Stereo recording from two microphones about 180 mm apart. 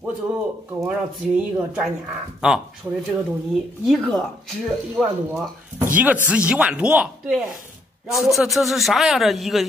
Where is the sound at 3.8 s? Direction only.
Centre (ahead or behind).